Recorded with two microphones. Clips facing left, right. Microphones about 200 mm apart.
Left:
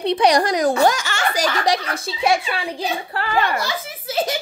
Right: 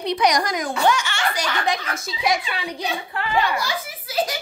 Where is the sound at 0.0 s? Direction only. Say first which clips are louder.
Left 4 dB; 30° left (ahead or behind).